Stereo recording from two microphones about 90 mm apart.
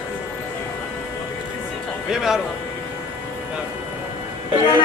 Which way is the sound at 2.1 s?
5° right (ahead or behind).